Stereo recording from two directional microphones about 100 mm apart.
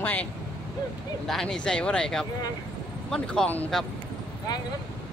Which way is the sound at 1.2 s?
5° left (ahead or behind).